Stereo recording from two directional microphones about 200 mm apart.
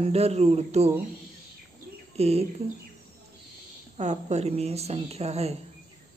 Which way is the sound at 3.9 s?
35° right (ahead or behind).